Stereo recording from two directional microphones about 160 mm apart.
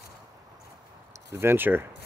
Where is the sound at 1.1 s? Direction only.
15° right (ahead or behind).